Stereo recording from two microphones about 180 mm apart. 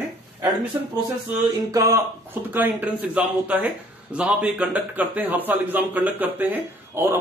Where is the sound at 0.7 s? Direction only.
15° right (ahead or behind).